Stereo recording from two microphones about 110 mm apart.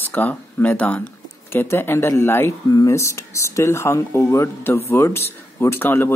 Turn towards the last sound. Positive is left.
turn(degrees=20)  # may be behind; listen again after turning